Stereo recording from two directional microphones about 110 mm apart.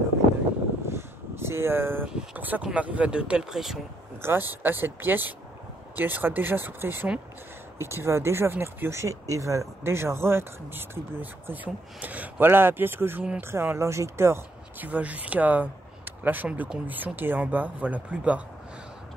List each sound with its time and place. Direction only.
0.9 s a sound: 20° right (ahead or behind)
2.1 s speech: 15° right (ahead or behind)
4.2 s speech: 20° right (ahead or behind)